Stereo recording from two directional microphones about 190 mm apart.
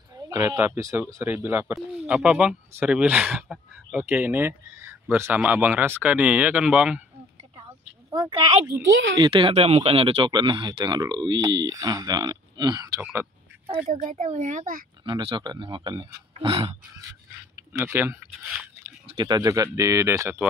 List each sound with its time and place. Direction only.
0.3 s speech: 10° right (ahead or behind)
8.1 s speech: 25° right (ahead or behind)
14.0 s a child's voice: 45° right (ahead or behind)
15.0 s speech: 25° right (ahead or behind)
17.7 s speech: 15° right (ahead or behind)
19.0 s speech: 25° right (ahead or behind)